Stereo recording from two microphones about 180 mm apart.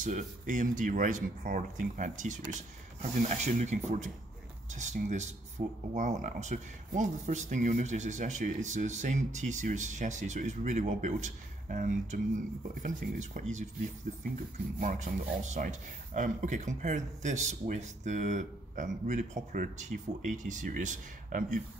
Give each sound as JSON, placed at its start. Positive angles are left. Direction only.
{"t": 0.0, "sound": "speech", "side_deg": -45}
{"t": 14.8, "sound": "speech", "side_deg": -45}